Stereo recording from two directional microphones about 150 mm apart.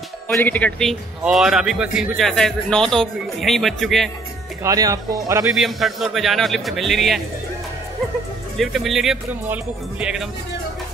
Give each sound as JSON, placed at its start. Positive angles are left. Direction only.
{"t": 0.4, "sound": "speech", "side_deg": 10}
{"t": 4.6, "sound": "speech", "side_deg": -20}
{"t": 5.6, "sound": "speech", "side_deg": 0}
{"t": 8.5, "sound": "speech", "side_deg": 0}